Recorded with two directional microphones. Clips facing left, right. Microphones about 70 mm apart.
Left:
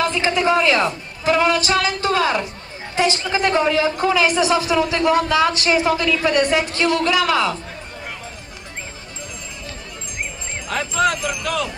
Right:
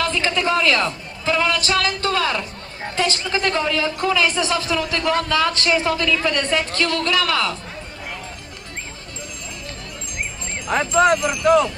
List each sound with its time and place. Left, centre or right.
0.0 s a woman's voice: centre
10.7 s speech: right
11.1 s speech: centre
11.4 s speech: right